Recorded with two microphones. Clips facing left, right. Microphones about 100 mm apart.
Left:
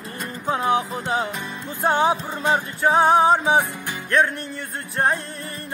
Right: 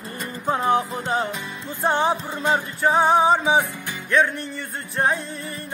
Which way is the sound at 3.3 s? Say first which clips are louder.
Left 1 dB; 15° left (ahead or behind).